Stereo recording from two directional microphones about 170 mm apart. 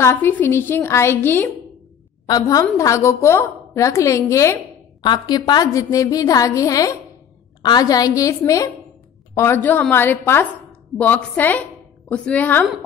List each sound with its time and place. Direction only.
0.0 s a woman's voice: 15° left (ahead or behind)